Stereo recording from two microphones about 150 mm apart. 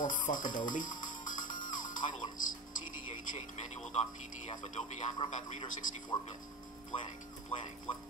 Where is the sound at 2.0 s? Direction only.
60° left (ahead or behind).